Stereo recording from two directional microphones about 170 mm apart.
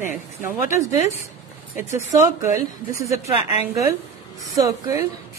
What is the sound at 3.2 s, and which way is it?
A woman's voice, 20° right (ahead or behind).